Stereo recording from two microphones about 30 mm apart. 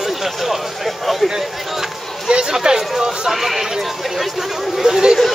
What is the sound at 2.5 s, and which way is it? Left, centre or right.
Speech, centre.